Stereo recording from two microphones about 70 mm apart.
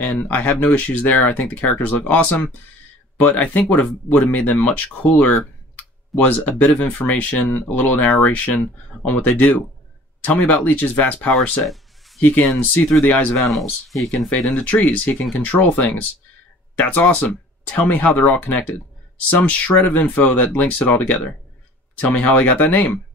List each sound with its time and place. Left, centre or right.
0.0 s speech: left
5.8 s clicking: left
6.8 s speech: left
11.6 s a sound: centre
12.2 s speech: left
13.4 s speech: centre
14.3 s speech: left